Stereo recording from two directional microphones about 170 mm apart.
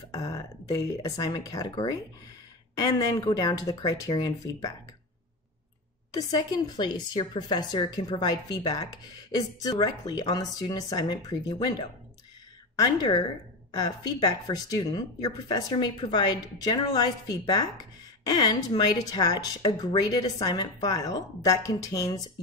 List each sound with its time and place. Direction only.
0.1 s speech: 20° left (ahead or behind)
6.1 s speech: 25° left (ahead or behind)